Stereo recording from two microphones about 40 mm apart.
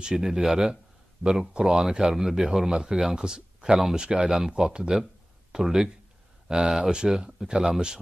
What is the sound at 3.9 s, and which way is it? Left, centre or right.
Speech, centre.